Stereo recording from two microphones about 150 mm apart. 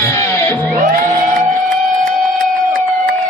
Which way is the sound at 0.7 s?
65° right (ahead or behind).